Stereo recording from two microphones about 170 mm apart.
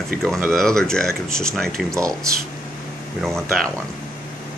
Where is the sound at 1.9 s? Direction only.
20° right (ahead or behind).